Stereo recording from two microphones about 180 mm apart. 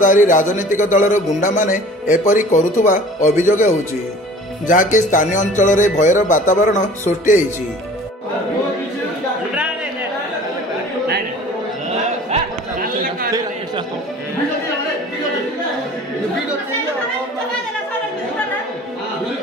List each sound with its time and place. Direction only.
0.0 s a man's voice: 45° left (ahead or behind)